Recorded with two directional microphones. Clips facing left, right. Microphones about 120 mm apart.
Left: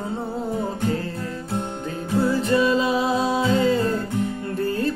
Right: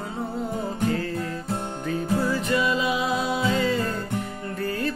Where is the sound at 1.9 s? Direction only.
30° left (ahead or behind).